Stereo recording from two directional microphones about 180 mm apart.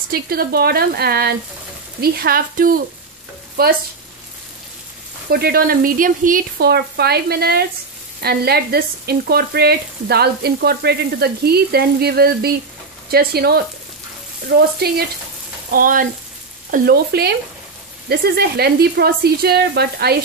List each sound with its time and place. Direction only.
0.1 s speech: 60° right (ahead or behind)
5.3 s speech: 60° right (ahead or behind)
15.7 s frying: 50° right (ahead or behind)
16.7 s speech: 60° right (ahead or behind)